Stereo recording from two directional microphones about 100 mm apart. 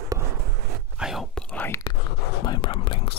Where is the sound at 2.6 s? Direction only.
60° left (ahead or behind).